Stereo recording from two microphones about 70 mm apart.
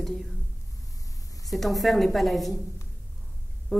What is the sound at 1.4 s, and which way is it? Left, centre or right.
Speech, centre.